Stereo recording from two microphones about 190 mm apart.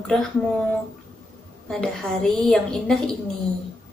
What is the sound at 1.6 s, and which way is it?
A woman's voice, centre (ahead or behind).